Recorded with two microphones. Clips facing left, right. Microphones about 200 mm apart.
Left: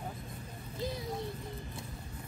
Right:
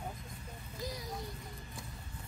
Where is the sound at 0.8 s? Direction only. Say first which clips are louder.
Left 5 dB; 25° left (ahead or behind).